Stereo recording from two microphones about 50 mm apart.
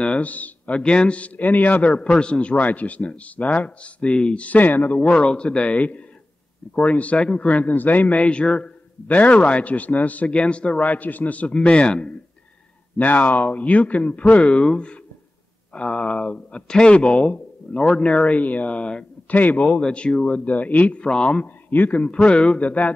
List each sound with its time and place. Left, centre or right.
0.2 s speech: left
2.5 s a man's voice: left
4.5 s a man's voice: left
5.2 s speech: centre
9.0 s speech: left
12.9 s a man's voice: left
19.3 s a man's voice: left
19.8 s speech: centre
21.6 s speech: left